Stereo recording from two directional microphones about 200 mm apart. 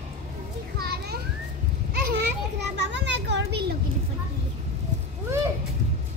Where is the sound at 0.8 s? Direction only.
50° right (ahead or behind).